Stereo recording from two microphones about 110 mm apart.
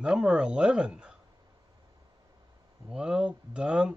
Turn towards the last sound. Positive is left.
turn(degrees=-10)  # may be behind; listen again after turning